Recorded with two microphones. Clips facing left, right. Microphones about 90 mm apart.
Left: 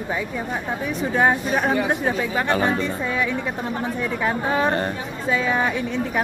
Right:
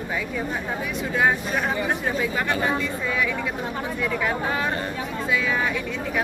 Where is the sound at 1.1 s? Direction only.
35° left (ahead or behind).